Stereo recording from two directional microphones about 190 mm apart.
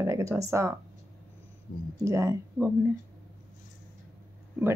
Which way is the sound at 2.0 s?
15° right (ahead or behind).